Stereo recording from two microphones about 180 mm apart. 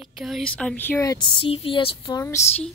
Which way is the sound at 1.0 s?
25° left (ahead or behind).